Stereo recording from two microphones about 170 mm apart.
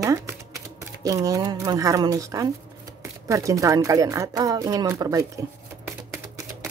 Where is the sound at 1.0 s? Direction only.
20° right (ahead or behind).